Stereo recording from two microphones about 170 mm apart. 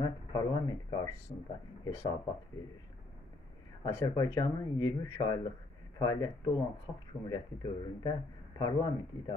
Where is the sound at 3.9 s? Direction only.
20° left (ahead or behind).